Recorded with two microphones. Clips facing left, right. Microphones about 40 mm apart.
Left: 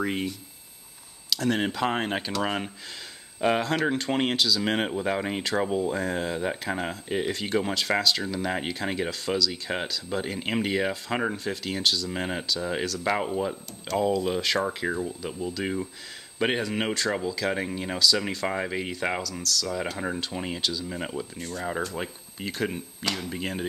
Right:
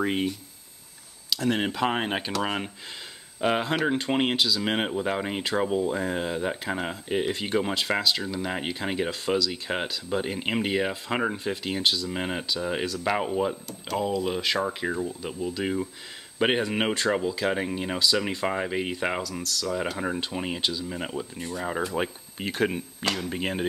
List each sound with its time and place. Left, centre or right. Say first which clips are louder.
0.0 s speech: right 2 dB; right
1.3 s speech: even; centre
12.1 s speech: even; centre
16.3 s speech: right 2 dB; centre
17.9 s speech: left 1 dB; right
18.5 s speech: right 1 dB; centre; by 19.7 s right
19.7 s speech: right 2 dB; centre
21.9 s speech: right 5 dB; right